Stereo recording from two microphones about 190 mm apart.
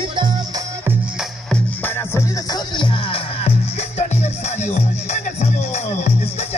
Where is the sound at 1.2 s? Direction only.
5° left (ahead or behind); by 6.6 s 35° left (ahead or behind).